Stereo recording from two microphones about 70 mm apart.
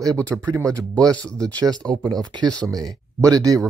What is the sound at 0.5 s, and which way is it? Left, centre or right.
Speech, right.